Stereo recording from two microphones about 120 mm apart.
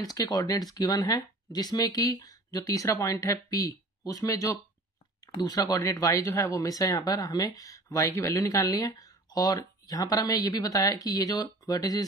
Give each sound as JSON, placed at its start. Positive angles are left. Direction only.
{"t": 0.0, "sound": "speech", "side_deg": 30}